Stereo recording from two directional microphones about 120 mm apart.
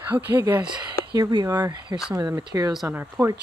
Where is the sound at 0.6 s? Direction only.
30° right (ahead or behind).